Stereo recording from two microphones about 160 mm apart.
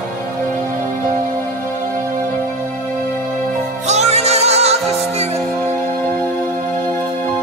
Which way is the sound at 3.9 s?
45° right (ahead or behind).